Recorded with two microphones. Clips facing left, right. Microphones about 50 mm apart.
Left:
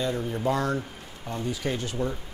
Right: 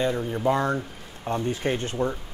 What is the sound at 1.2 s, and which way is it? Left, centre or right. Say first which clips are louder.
Speech: right 4 dB; right.